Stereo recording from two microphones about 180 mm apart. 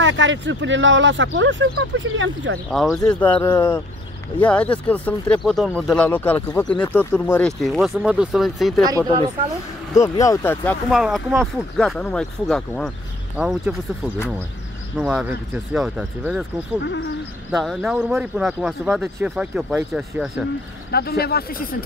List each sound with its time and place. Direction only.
0.0 s speech: 90° right
2.7 s speech: centre (ahead or behind)
9.9 s speech: 20° left (ahead or behind)
10.9 s speech: centre (ahead or behind)
15.0 s speech: 5° right (ahead or behind)
17.5 s speech: centre (ahead or behind)
20.9 s speech: 60° left (ahead or behind)